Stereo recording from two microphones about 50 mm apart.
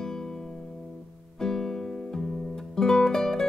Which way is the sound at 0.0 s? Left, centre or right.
Centre.